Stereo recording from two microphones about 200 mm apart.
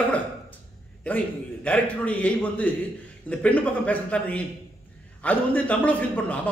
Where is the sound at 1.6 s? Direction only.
5° left (ahead or behind).